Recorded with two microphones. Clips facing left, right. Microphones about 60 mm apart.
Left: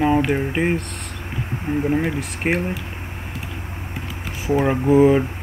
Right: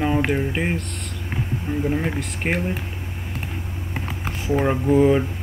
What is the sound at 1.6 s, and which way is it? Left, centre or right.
Speech, centre.